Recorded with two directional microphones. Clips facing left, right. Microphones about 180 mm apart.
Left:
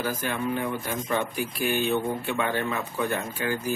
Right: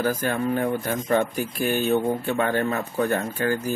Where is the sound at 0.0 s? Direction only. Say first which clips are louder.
Right 5 dB; 45° right (ahead or behind).